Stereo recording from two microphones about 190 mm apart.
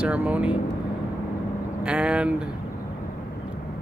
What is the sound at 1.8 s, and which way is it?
Speech, 5° right (ahead or behind).